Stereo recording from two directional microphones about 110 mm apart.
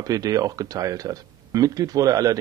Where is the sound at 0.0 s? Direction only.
35° right (ahead or behind).